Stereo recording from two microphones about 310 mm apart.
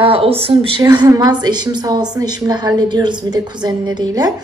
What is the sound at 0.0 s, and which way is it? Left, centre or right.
A woman's voice, centre.